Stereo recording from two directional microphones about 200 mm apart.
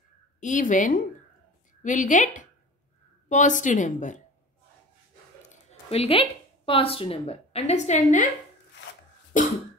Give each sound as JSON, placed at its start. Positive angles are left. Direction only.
{"t": 0.4, "sound": "speech", "side_deg": 40}
{"t": 5.5, "sound": "speech", "side_deg": 30}
{"t": 9.3, "sound": "cough", "side_deg": 40}